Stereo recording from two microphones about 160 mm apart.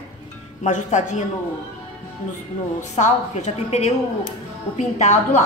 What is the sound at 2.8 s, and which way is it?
Speech, 45° left (ahead or behind).